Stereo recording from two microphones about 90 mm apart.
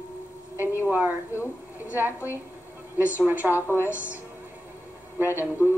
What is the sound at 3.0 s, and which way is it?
Speech, 20° right (ahead or behind).